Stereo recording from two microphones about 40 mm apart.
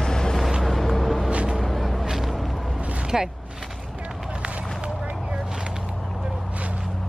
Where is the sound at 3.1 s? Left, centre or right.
Centre.